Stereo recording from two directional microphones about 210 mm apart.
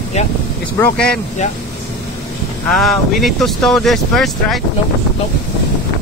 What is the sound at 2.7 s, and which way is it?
Speech, centre (ahead or behind).